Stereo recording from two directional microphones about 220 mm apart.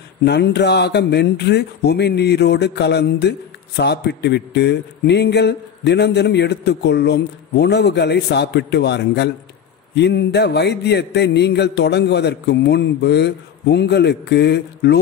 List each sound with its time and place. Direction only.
0.2 s speech: 50° left (ahead or behind)